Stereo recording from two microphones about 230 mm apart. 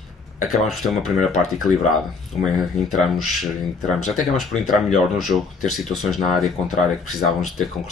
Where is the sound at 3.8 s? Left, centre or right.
Centre.